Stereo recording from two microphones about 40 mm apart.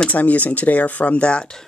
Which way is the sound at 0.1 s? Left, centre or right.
Left.